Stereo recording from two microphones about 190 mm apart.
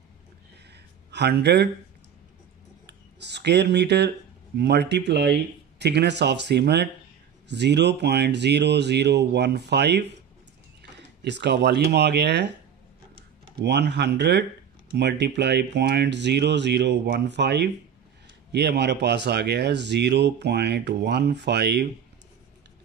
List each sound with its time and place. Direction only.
1.1 s speech: 60° right (ahead or behind)
2.9 s a sound: 65° right (ahead or behind)
4.6 s speech: 60° right (ahead or behind)
13.6 s speech: 60° right (ahead or behind)